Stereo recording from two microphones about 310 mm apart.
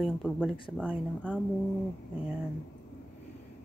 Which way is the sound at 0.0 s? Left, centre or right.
Centre.